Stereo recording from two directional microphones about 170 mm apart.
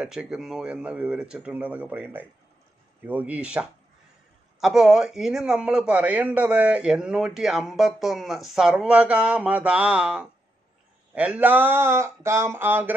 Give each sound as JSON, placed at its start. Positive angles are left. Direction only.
{"t": 0.0, "sound": "a man's voice", "side_deg": -5}